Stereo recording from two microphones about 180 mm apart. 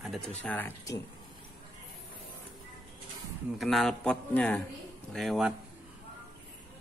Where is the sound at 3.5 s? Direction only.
Centre (ahead or behind).